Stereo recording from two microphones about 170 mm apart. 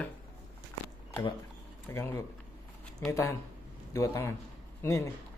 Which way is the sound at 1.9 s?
15° left (ahead or behind).